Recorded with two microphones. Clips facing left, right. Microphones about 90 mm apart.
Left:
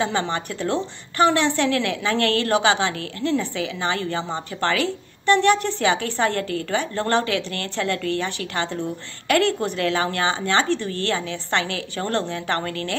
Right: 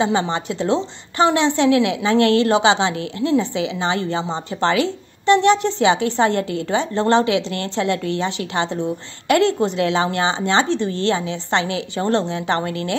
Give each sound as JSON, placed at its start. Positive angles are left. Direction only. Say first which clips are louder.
{"t": 0.0, "sound": "a woman's voice", "louder": "right 4 dB", "side_deg": -20}